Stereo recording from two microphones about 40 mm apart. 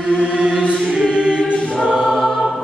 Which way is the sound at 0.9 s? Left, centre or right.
Right.